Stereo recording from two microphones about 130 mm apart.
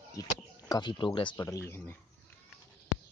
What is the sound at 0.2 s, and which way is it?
Speech, 30° left (ahead or behind).